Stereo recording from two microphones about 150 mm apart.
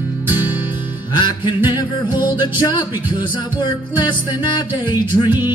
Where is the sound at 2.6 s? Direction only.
30° left (ahead or behind).